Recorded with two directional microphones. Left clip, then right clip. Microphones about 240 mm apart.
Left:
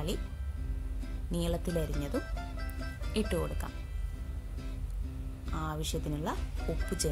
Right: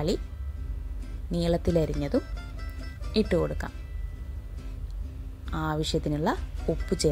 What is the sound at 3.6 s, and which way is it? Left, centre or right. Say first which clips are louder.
Speech: right 5 dB; centre.